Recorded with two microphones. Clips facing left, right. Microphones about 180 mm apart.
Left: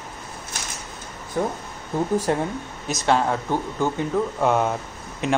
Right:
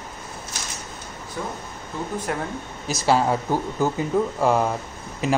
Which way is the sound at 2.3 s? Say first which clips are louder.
Left 3 dB; 30° left (ahead or behind).